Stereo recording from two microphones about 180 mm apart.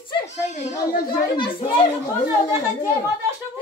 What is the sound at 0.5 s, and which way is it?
Speech, 40° left (ahead or behind).